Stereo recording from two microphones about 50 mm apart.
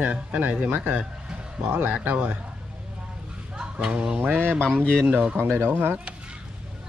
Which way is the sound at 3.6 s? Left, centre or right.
Centre.